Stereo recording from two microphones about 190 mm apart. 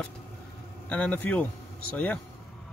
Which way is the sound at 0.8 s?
5° left (ahead or behind).